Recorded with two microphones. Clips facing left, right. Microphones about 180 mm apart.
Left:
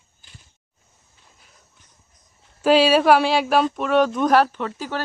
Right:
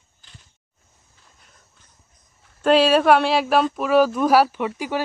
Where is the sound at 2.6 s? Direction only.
Centre (ahead or behind).